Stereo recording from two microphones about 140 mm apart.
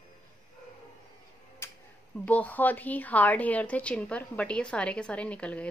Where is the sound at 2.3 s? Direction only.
10° left (ahead or behind).